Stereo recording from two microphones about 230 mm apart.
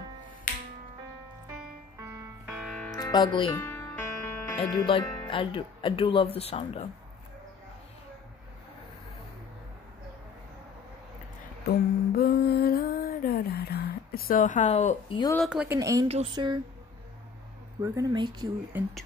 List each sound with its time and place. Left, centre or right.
0.5 s music: left
2.0 s music: centre
3.0 s speech: centre
3.5 s music: centre
4.6 s speech: left
12.2 s a sound: left
15.1 s speech: centre
15.4 s speech: centre; by 16.5 s right
17.8 s speech: centre